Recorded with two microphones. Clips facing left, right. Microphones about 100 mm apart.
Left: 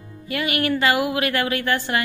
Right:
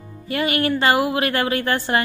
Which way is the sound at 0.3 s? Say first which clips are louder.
Right 2 dB; 30° right (ahead or behind).